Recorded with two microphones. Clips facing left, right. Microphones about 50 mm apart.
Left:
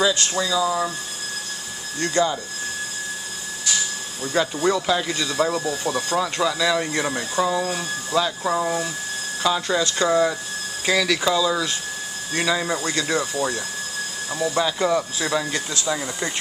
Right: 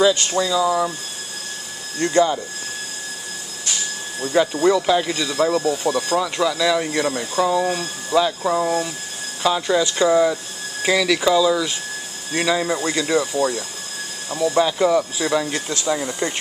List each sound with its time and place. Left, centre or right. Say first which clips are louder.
0.4 s speech: right 2 dB; centre
2.0 s speech: right 4 dB; right
4.4 s speech: right 4 dB; centre